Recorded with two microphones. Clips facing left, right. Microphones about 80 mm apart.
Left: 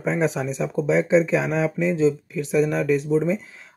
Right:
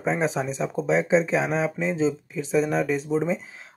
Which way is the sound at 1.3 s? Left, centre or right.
Right.